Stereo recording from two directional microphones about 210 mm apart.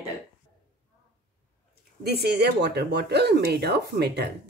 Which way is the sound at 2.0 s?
50° right (ahead or behind).